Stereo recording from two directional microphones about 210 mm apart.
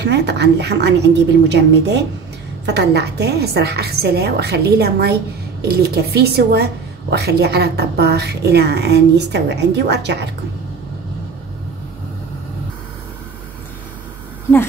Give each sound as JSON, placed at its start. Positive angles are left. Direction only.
{"t": 0.0, "sound": "a woman's voice", "side_deg": -55}